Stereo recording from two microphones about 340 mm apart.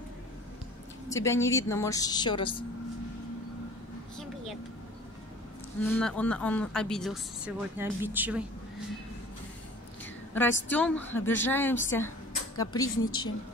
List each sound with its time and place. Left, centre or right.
1.0 s a woman's voice: centre
5.9 s speech: centre
10.3 s a woman's voice: centre
13.0 s a woman's voice: left